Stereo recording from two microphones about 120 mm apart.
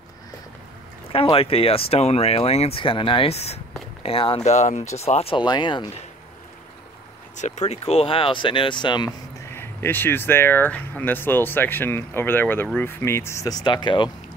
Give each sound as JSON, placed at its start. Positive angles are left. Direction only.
{"t": 1.1, "sound": "speech", "side_deg": 50}
{"t": 2.8, "sound": "speech", "side_deg": 45}
{"t": 4.0, "sound": "speech", "side_deg": 50}
{"t": 4.5, "sound": "speech", "side_deg": 75}
{"t": 5.4, "sound": "speech", "side_deg": 40}
{"t": 7.3, "sound": "speech", "side_deg": 80}
{"t": 9.6, "sound": "speech", "side_deg": 20}